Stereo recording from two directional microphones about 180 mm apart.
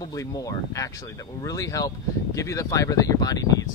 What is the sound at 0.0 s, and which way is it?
Speech, 20° left (ahead or behind).